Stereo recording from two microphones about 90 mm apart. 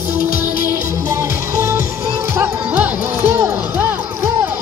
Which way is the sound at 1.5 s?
35° right (ahead or behind).